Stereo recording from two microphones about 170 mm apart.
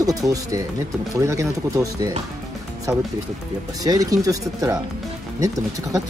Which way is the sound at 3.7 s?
20° right (ahead or behind).